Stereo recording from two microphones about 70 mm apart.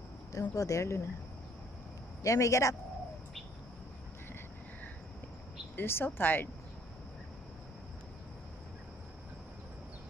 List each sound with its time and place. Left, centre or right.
0.3 s speech: left
2.2 s speech: left
5.8 s a woman's voice: left